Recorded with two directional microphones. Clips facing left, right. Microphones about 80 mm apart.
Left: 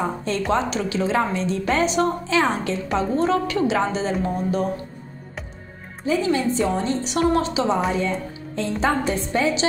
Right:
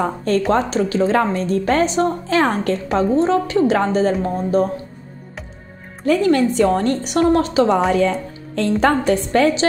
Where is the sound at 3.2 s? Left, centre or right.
Right.